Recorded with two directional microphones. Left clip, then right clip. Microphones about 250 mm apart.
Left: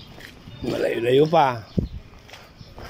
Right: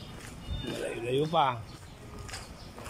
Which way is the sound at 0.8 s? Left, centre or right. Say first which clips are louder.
Left 13 dB; left.